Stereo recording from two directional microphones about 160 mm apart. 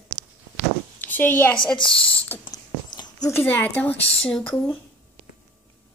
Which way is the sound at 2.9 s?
25° left (ahead or behind).